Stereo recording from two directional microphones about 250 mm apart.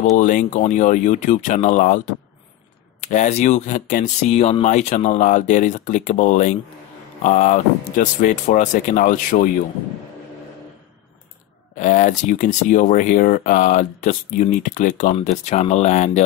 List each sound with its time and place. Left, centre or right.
0.2 s speech: left
11.7 s speech: left